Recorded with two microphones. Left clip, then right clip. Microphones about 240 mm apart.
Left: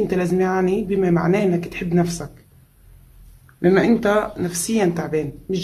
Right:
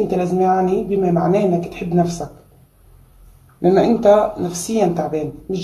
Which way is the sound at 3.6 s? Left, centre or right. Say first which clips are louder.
Right 3 dB; centre.